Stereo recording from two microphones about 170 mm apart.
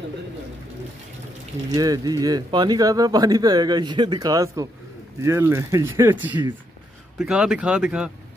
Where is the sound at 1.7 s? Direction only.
20° right (ahead or behind); by 8.1 s 5° right (ahead or behind).